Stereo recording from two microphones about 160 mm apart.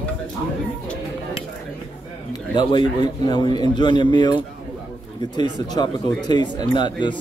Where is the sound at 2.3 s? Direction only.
25° left (ahead or behind).